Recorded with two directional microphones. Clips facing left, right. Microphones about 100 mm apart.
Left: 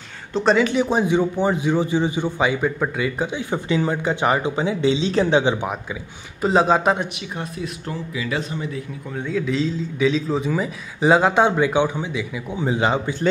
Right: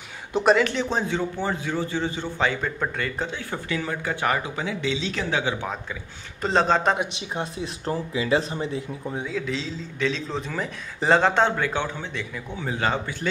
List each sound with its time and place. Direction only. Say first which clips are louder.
0.3 s speech: left 1 dB; 10° right (ahead or behind)
0.6 s a man's voice: left 5 dB; 5° left (ahead or behind); by 5.8 s 20° left (ahead or behind)
6.4 s a man's voice: left 4 dB; 10° left (ahead or behind)
7.2 s speech: even; 25° right (ahead or behind)
9.2 s a man's voice: left 10 dB; centre (ahead or behind); by 13.1 s 15° left (ahead or behind)